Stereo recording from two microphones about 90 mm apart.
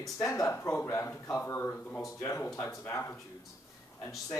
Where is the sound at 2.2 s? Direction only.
30° left (ahead or behind).